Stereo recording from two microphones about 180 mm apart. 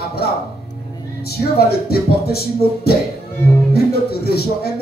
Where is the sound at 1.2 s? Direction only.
60° left (ahead or behind).